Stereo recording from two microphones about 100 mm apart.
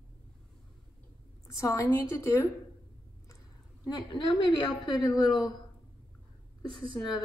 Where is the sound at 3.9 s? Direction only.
45° left (ahead or behind).